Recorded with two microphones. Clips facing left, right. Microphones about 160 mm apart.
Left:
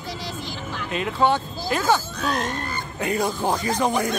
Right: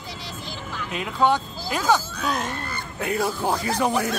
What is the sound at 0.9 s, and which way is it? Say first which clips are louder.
Speech: even; 10° right (ahead or behind).